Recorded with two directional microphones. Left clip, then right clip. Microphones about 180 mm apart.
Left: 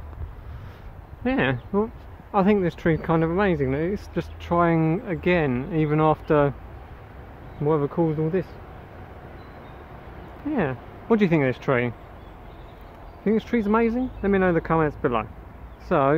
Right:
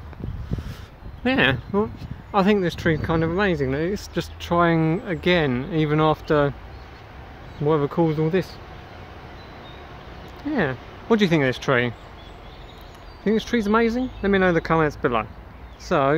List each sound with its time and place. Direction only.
1.2 s speech: 10° right (ahead or behind)
7.6 s speech: 10° right (ahead or behind)
8.0 s speech: 25° right (ahead or behind)
10.5 s speech: 10° right (ahead or behind)
13.2 s speech: 5° right (ahead or behind)